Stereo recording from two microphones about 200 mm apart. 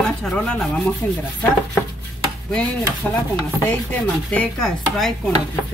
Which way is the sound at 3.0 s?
5° left (ahead or behind).